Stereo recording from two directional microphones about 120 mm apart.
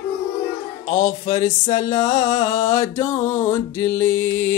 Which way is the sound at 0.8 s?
65° left (ahead or behind).